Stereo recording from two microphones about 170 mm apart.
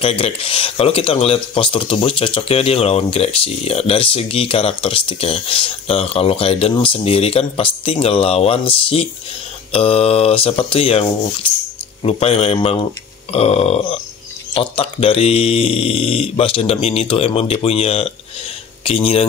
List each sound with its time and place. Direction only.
0.0 s speech: 35° left (ahead or behind)